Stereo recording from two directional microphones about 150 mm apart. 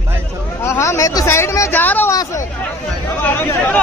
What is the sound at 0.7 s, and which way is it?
Speech, 20° left (ahead or behind).